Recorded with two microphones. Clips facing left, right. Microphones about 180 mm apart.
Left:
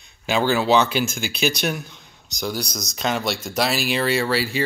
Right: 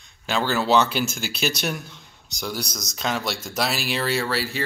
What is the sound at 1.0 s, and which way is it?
Speech, 5° right (ahead or behind).